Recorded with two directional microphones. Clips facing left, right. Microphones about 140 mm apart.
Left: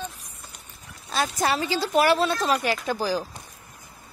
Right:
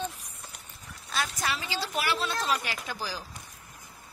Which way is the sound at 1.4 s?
40° left (ahead or behind).